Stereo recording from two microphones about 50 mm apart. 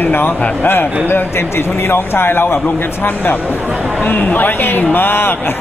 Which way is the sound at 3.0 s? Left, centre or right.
Left.